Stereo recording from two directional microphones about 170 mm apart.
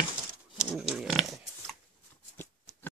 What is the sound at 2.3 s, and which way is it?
Shuffling cards, 10° left (ahead or behind).